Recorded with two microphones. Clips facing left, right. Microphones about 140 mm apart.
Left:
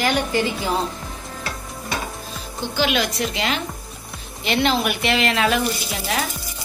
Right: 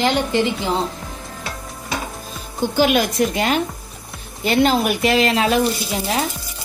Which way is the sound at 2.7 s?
45° right (ahead or behind).